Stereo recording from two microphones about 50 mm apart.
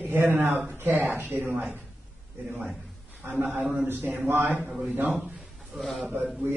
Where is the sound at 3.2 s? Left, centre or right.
Right.